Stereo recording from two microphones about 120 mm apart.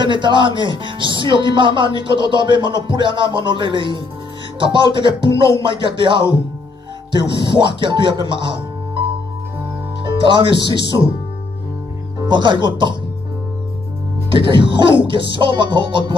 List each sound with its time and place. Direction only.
0.0 s speech: 40° right (ahead or behind)
10.2 s speech: 45° right (ahead or behind)
12.2 s speech: 40° right (ahead or behind)
14.3 s speech: 45° right (ahead or behind)